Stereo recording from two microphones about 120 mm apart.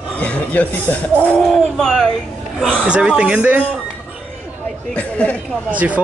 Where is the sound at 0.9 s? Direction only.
15° left (ahead or behind).